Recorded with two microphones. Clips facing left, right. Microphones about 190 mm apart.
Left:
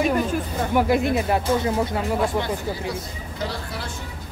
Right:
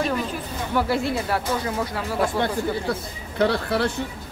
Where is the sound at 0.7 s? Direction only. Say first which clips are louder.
Left 3 dB; 15° left (ahead or behind).